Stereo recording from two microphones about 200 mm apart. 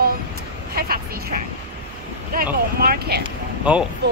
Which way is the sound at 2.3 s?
45° right (ahead or behind).